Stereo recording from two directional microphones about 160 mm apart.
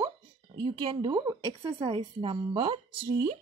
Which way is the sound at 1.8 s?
35° right (ahead or behind).